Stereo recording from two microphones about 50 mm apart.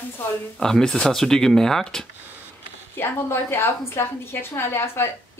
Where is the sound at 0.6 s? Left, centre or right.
Centre.